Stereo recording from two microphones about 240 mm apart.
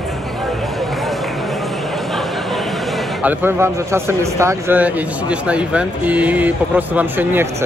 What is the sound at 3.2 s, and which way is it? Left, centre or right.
A man's voice, centre.